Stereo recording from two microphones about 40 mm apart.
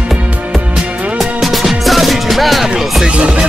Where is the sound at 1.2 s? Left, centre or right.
Centre.